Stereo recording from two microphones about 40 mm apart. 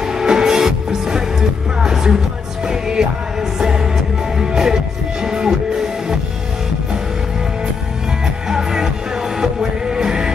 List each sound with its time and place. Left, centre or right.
0.0 s music: centre
8.5 s music: centre